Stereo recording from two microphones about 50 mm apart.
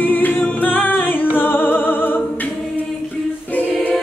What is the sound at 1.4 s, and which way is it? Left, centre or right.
Music, left.